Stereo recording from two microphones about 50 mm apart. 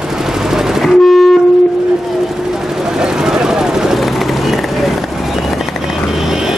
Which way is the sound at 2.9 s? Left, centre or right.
Centre.